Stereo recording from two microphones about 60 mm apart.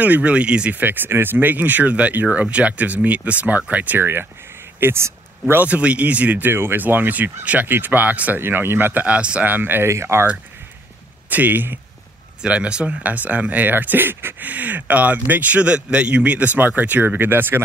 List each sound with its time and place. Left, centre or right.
0.0 s speech: right
0.7 s speech: right
4.0 s speech: right
5.7 s speech: right
9.0 s speech: right
9.5 s speech: right
9.8 s speech: right
11.2 s speech: right
12.4 s speech: centre; by 17.6 s right